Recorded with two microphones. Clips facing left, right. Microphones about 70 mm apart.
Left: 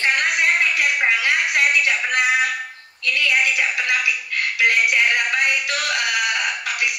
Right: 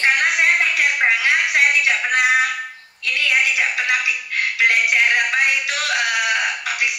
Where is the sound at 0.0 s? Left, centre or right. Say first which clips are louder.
Right 2 dB; right.